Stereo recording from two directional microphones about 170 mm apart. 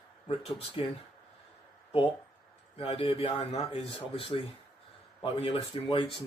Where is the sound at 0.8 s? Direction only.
35° left (ahead or behind).